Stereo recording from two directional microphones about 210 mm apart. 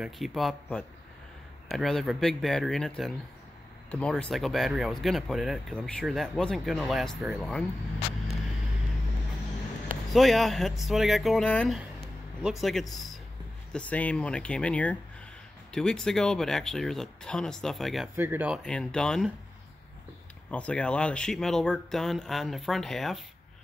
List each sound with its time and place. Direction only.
0.0 s speech: centre (ahead or behind)
10.0 s speech: centre (ahead or behind)
12.9 s a sound: centre (ahead or behind)
13.7 s speech: 5° left (ahead or behind)
18.1 s speech: 10° right (ahead or behind)
18.6 s speech: 5° left (ahead or behind)
20.4 s speech: 5° left (ahead or behind)